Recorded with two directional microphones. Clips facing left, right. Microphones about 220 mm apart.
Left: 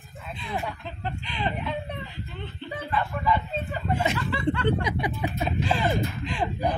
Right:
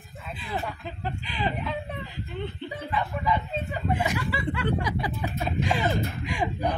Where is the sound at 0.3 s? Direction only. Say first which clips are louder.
Left 1 dB; 5° right (ahead or behind).